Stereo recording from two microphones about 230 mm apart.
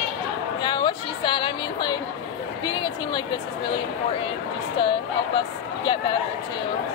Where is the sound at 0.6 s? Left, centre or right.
Centre.